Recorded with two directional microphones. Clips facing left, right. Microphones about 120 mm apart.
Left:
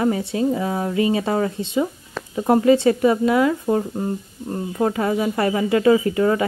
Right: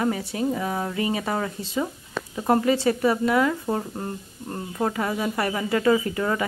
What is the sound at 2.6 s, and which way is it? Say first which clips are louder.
Speech: left 6 dB; 25° left (ahead or behind).